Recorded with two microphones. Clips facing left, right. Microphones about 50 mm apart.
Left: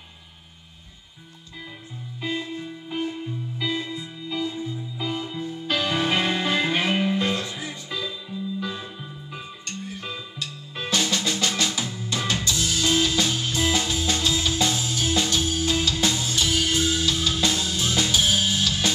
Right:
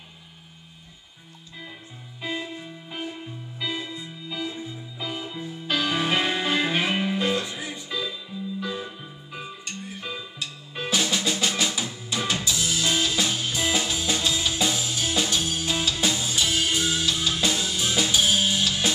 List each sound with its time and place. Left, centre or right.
2.2 s music: centre
9.9 s drum: centre
12.4 s music: centre
17.9 s drum kit: centre